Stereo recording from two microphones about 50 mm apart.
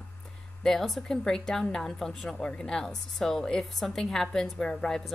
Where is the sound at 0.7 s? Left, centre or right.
Centre.